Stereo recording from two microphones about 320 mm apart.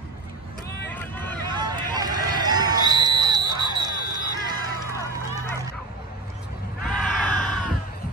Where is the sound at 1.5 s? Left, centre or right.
Centre.